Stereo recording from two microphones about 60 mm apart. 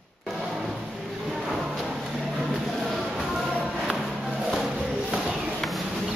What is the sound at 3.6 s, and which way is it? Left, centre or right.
Music, right.